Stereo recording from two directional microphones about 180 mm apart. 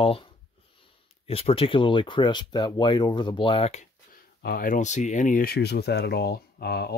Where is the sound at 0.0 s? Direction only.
30° left (ahead or behind).